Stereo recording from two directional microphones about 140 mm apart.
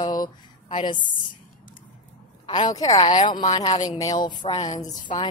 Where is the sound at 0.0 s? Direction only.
30° left (ahead or behind).